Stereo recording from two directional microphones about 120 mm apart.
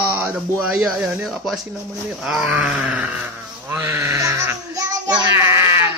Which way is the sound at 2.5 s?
10° right (ahead or behind).